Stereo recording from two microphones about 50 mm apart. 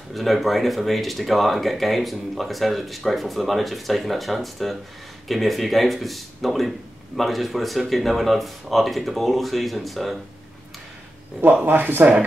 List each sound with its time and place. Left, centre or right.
0.1 s speech: centre
11.6 s speech: right